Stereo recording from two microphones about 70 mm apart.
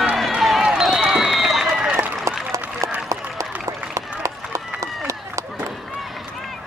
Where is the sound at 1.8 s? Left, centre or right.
Centre.